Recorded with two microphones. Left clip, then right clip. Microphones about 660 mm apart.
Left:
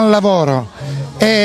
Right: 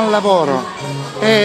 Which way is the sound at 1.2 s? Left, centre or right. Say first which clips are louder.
Even; left.